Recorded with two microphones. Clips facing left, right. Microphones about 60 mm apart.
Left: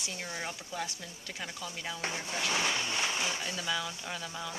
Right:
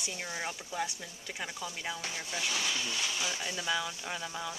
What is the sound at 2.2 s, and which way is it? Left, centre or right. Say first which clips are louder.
Speech: left 3 dB; left.